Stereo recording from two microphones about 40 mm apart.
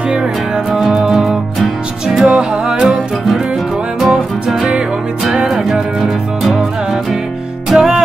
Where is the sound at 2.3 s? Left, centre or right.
Right.